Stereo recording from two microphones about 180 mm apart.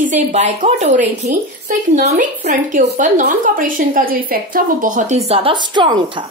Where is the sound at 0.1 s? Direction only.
40° right (ahead or behind).